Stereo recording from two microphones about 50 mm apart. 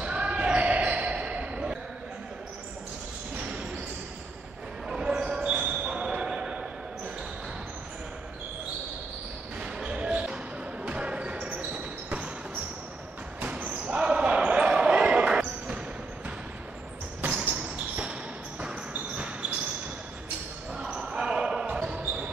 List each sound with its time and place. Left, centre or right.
0.0 s basketball bounce: right
4.8 s basketball bounce: centre
9.6 s basketball bounce: right
13.4 s basketball bounce: right
18.6 s basketball bounce: right
20.7 s basketball bounce: centre